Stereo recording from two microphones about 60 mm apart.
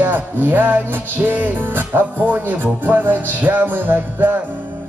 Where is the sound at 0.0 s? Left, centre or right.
Right.